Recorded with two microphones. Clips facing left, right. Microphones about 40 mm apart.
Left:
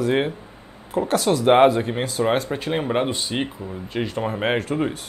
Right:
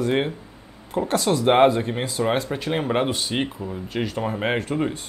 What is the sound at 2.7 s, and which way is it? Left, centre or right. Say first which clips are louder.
Speech: even; centre.